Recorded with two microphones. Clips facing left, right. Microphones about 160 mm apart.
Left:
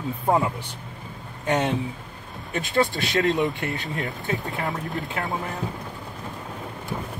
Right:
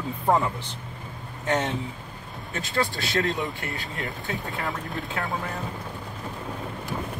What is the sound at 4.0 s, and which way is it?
Speech, centre (ahead or behind).